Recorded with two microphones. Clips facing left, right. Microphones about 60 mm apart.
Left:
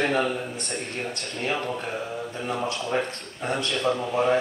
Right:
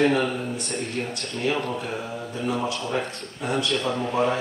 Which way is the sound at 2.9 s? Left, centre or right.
Left.